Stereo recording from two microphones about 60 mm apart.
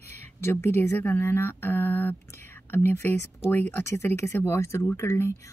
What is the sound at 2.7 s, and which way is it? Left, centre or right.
Speech, left.